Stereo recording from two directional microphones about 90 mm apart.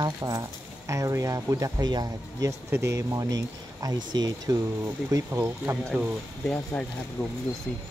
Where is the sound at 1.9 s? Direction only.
50° right (ahead or behind).